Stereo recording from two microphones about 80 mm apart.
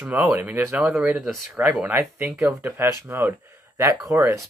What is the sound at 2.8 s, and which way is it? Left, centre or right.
Speech, right.